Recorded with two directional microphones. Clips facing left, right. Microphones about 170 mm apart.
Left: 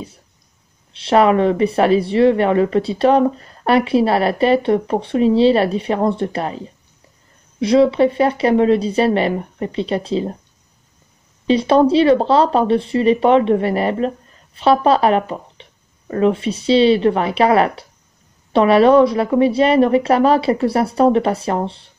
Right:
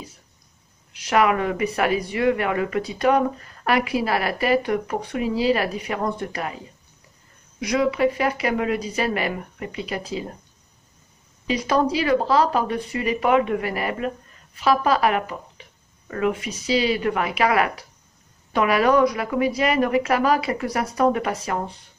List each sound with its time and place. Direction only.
0.9 s speech: 30° left (ahead or behind)
7.6 s a woman's voice: 30° left (ahead or behind)
11.4 s a woman's voice: 30° left (ahead or behind)